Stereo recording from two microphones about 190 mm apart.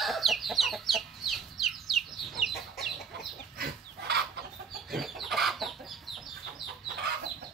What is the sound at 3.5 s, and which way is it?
Chicken, 55° right (ahead or behind).